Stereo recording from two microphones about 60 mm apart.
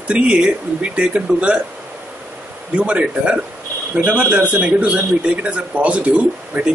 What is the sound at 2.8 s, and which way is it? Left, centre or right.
A man's voice, centre.